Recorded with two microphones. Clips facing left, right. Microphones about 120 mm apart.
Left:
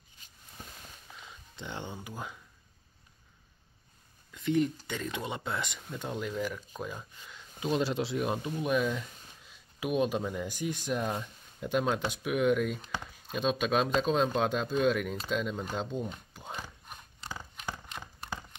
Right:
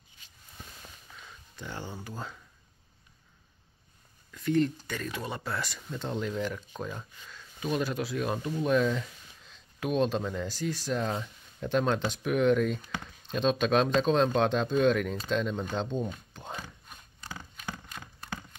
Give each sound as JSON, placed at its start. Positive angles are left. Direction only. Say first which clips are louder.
{"t": 1.2, "sound": "a sound", "louder": "right 1 dB", "side_deg": 20}
{"t": 2.0, "sound": "speech", "louder": "right 1 dB", "side_deg": 15}
{"t": 4.3, "sound": "speech", "louder": "right 2 dB", "side_deg": 20}
{"t": 5.8, "sound": "speech", "louder": "right 3 dB", "side_deg": 10}
{"t": 7.2, "sound": "speech", "louder": "left 1 dB", "side_deg": 20}
{"t": 8.5, "sound": "speech", "louder": "right 5 dB", "side_deg": 10}
{"t": 16.3, "sound": "a sound", "louder": "right 2 dB", "side_deg": 10}